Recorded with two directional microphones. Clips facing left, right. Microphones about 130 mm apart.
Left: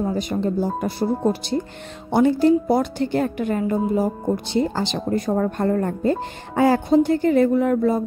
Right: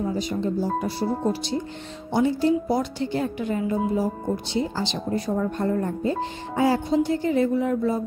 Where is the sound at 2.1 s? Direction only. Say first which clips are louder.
Left 5 dB; 60° left (ahead or behind).